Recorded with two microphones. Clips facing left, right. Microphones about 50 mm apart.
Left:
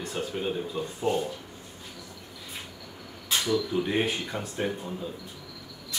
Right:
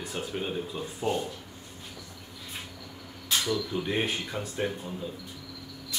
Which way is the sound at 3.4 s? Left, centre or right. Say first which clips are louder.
Left 6 dB; centre.